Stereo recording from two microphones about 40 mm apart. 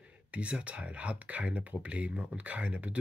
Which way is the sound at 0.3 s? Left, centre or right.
Right.